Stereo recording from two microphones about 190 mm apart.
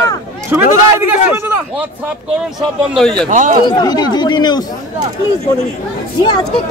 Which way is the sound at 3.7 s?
20° left (ahead or behind).